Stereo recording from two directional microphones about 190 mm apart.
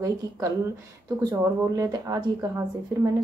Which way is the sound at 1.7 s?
20° right (ahead or behind).